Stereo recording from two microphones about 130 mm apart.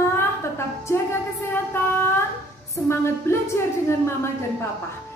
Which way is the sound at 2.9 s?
20° left (ahead or behind).